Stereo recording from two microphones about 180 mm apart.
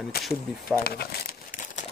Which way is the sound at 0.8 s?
60° left (ahead or behind).